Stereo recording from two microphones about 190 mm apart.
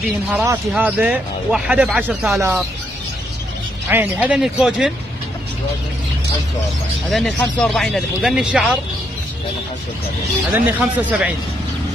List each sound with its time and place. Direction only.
0.5 s speech: 10° right (ahead or behind)
3.9 s speech: 10° right (ahead or behind)
7.1 s speech: centre (ahead or behind)
10.5 s speech: 10° right (ahead or behind)